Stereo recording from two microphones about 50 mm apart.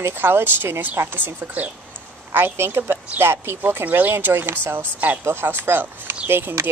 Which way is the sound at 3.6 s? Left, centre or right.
Right.